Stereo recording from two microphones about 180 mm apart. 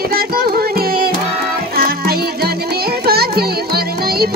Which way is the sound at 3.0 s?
60° right (ahead or behind).